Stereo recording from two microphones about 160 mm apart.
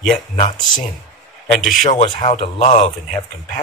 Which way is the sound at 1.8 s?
45° left (ahead or behind).